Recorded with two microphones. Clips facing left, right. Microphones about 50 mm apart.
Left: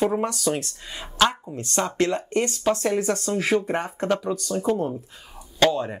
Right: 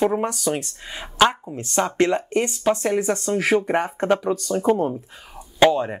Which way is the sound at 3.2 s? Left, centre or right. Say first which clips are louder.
Right 3 dB; right.